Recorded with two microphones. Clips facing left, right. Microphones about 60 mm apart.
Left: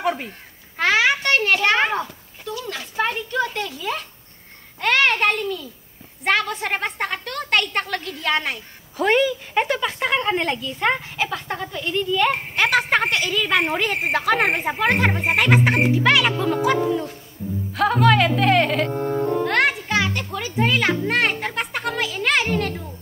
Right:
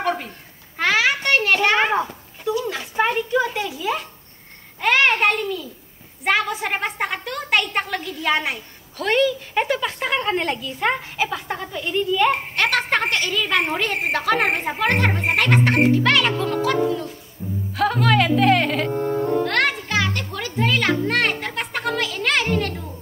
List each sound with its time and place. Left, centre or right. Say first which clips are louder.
0.7 s a sound: left 1 dB; centre
1.2 s children playing: right 1 dB; centre
2.4 s a child's voice: right 6 dB; centre
8.9 s speech: left 1 dB; centre
9.6 s speech: left 1 dB; centre
17.7 s speech: left 2 dB; centre